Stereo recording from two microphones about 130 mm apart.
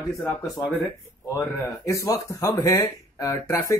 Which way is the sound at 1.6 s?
25° left (ahead or behind).